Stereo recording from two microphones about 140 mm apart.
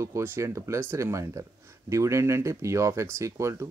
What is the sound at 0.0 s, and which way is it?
Speech, 20° right (ahead or behind).